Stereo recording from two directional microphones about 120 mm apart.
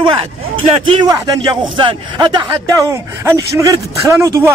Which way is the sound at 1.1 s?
35° right (ahead or behind).